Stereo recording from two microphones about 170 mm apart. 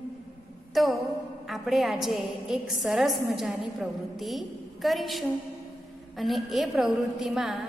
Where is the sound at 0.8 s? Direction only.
Centre (ahead or behind).